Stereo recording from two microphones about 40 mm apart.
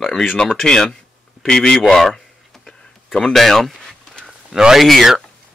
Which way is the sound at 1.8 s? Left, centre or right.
Centre.